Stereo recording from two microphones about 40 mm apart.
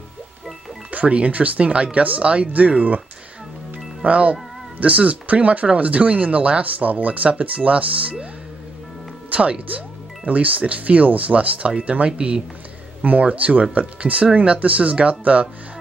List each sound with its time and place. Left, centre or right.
1.0 s speech: right
3.7 s speech: right
9.3 s speech: right
13.2 s speech: right